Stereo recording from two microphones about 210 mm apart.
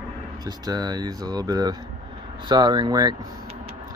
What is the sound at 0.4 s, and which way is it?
Speech, 20° right (ahead or behind).